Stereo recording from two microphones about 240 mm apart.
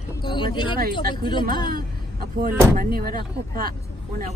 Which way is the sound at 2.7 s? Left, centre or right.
Right.